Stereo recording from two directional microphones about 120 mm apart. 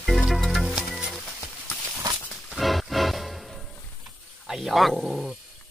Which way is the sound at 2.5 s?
Centre (ahead or behind).